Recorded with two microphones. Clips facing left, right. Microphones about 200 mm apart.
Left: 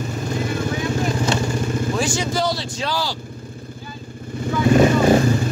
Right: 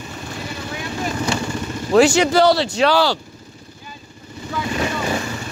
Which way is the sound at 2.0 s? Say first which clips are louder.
Right 14 dB; 70° right (ahead or behind).